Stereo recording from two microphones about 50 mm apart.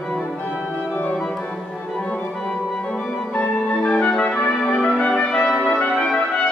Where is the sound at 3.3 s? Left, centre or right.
Left.